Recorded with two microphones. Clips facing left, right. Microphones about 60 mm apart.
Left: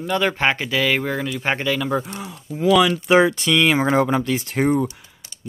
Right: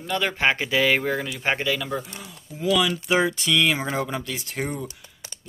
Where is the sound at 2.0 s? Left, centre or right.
Left.